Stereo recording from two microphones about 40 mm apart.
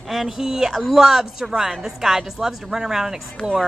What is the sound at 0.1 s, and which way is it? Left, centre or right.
A woman's voice, centre.